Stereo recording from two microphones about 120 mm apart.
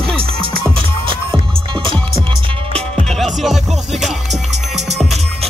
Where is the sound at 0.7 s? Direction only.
45° right (ahead or behind).